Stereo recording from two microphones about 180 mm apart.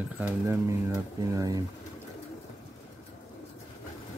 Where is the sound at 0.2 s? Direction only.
15° right (ahead or behind).